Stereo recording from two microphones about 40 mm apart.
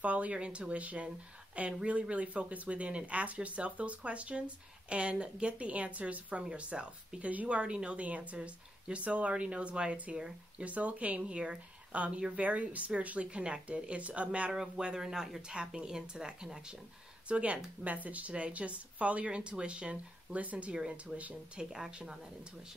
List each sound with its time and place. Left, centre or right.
0.0 s speech: right
13.3 s speech: right
15.0 s speech: centre
15.4 s speech: right
17.3 s speech: right
17.8 s speech: right
21.6 s speech: centre